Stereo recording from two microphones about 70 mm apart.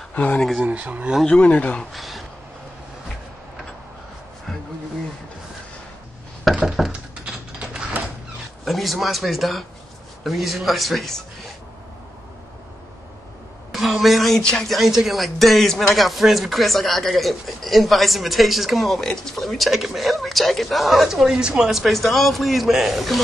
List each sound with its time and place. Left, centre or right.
0.1 s speech: left
0.6 s speech: right
1.2 s speech: centre
1.9 s speech: centre
6.4 s speech: centre
6.9 s a sound: centre
8.6 s speech: centre
13.7 s a woman's voice: centre